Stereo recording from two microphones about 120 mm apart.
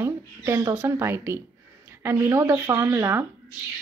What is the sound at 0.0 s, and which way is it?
Speech, 20° right (ahead or behind).